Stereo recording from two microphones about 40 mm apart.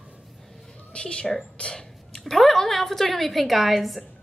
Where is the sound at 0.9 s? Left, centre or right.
Left.